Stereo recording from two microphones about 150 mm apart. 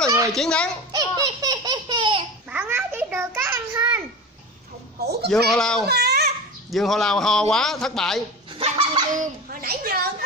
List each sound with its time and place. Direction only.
0.3 s a man's voice: 5° left (ahead or behind)
0.9 s laughter: 25° right (ahead or behind)
2.5 s a sound: 10° right (ahead or behind)
5.0 s a sound: 90° right
5.3 s a man's voice: 5° left (ahead or behind)
5.9 s babbling: 90° right
6.7 s a man's voice: centre (ahead or behind)
8.5 s fowl: 35° right (ahead or behind)
9.1 s a woman's voice: 65° right (ahead or behind)